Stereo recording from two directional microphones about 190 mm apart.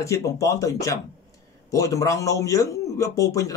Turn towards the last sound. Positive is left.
turn(degrees=15)  # may be behind; listen again after turning